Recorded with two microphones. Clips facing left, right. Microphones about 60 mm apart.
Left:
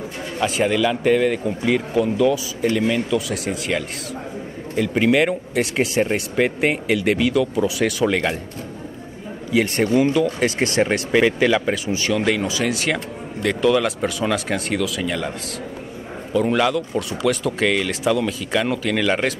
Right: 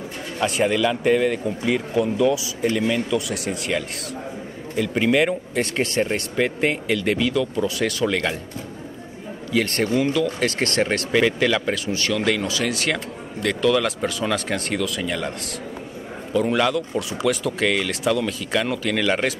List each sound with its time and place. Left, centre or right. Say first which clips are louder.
0.4 s speech: left 1 dB; centre
9.5 s speech: left 3 dB; centre
10.0 s speech: left 3 dB; left
10.4 s speech: left 2 dB; centre
16.3 s speech: left 1 dB; centre